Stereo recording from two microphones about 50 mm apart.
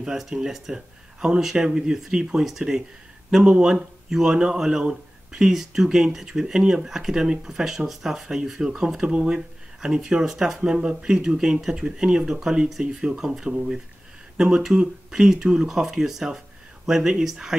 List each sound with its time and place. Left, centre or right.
0.0 s speech: centre